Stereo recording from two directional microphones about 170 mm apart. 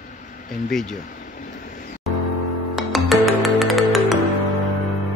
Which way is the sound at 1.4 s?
55° left (ahead or behind).